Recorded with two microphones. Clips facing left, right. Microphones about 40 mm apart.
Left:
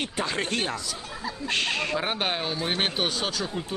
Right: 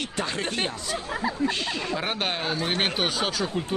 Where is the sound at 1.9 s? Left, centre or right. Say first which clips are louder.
Left 1 dB; centre.